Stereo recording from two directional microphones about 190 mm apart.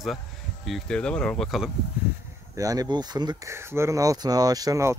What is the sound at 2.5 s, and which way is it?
Speech, 20° right (ahead or behind).